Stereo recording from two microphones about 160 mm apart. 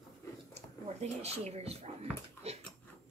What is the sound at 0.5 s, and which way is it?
Speech, 40° right (ahead or behind).